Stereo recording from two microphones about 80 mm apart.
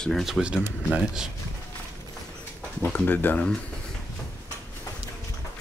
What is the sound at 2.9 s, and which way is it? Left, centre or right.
Speech, left.